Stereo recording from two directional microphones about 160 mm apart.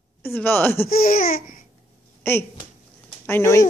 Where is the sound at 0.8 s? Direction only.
65° left (ahead or behind).